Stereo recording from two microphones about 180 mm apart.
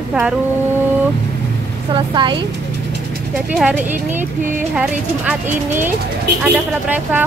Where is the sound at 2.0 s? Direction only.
25° right (ahead or behind).